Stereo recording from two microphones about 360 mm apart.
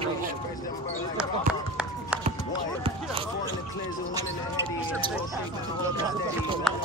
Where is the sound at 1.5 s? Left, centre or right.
Centre.